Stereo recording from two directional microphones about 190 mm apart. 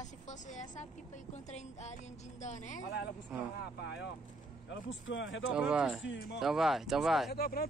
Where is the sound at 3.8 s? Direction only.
60° left (ahead or behind).